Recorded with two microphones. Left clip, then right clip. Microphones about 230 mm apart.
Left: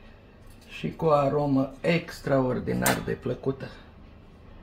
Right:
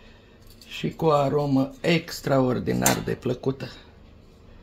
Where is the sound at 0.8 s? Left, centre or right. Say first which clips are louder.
Right 1 dB; right.